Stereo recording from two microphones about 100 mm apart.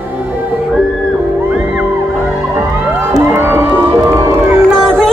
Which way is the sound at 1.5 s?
15° right (ahead or behind).